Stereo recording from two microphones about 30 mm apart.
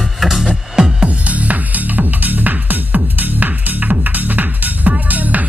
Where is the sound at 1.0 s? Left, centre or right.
Right.